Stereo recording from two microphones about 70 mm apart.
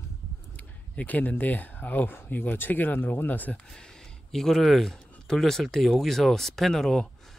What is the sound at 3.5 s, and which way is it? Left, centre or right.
Speech, centre.